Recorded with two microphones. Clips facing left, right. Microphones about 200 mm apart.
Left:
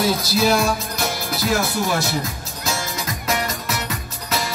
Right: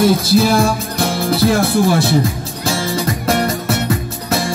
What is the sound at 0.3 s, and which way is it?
Music, 30° right (ahead or behind).